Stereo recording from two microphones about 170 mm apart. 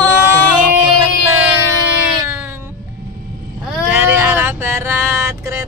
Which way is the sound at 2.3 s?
15° right (ahead or behind).